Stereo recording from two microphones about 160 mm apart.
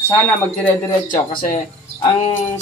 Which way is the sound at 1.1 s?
55° left (ahead or behind).